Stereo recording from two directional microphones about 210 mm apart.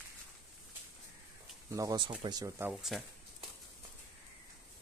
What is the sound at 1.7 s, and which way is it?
Speech, 15° right (ahead or behind).